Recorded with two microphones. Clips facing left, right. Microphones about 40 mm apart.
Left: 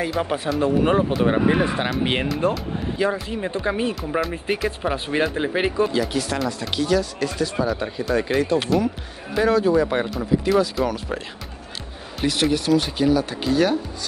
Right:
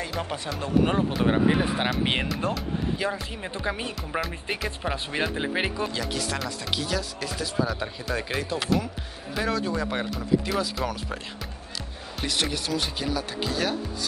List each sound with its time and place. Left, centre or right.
0.2 s speech: left; by 11.0 s centre
12.2 s speech: centre